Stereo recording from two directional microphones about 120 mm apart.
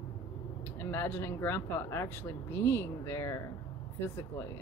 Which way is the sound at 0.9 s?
20° left (ahead or behind).